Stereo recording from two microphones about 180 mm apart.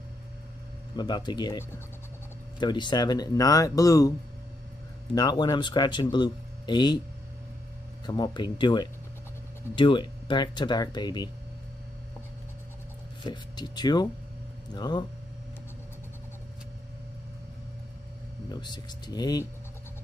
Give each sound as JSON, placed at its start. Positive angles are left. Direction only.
{"t": 0.9, "sound": "speech", "side_deg": 25}
{"t": 5.1, "sound": "speech", "side_deg": 20}
{"t": 8.1, "sound": "speech", "side_deg": 25}
{"t": 13.2, "sound": "speech", "side_deg": 25}
{"t": 18.5, "sound": "speech", "side_deg": 25}